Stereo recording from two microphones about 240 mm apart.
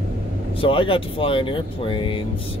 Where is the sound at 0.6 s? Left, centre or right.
Left.